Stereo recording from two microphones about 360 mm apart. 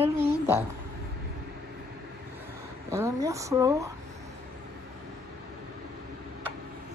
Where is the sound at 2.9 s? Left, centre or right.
Centre.